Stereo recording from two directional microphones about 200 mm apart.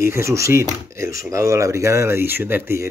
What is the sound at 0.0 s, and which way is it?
Speech, 15° right (ahead or behind).